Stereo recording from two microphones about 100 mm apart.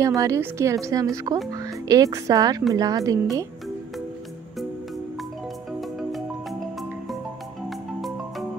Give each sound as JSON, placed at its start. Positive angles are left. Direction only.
{"t": 0.0, "sound": "speech", "side_deg": -35}
{"t": 5.8, "sound": "music", "side_deg": 0}